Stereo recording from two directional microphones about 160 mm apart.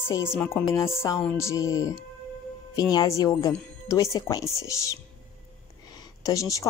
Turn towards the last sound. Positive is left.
turn(degrees=20)  # may be behind; listen again after turning